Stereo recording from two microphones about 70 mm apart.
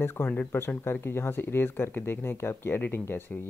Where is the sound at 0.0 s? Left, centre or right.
Left.